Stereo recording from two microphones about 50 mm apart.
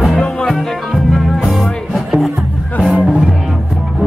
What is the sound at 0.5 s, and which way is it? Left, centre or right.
Music, centre.